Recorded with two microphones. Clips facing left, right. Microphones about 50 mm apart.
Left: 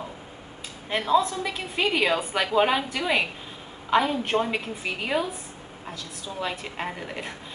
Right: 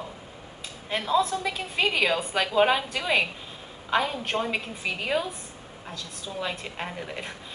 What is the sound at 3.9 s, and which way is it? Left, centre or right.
Speech, centre.